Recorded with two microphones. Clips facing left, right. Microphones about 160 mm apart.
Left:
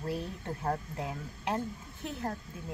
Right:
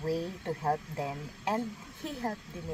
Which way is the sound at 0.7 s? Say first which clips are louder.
Right 2 dB; 30° right (ahead or behind).